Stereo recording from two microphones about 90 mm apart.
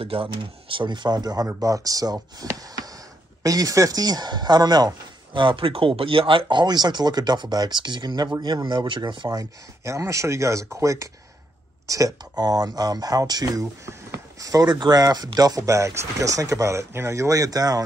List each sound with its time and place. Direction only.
0.0 s speech: 85° right; by 2.1 s 40° right (ahead or behind)
3.4 s speech: 40° right (ahead or behind); by 9.3 s 60° right (ahead or behind)
9.3 s speech: 40° right (ahead or behind)
13.8 s a sound: 35° right (ahead or behind)
14.7 s speech: 50° right (ahead or behind)